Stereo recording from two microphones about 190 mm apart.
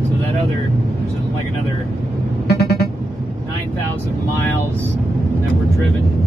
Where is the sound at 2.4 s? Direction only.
60° left (ahead or behind).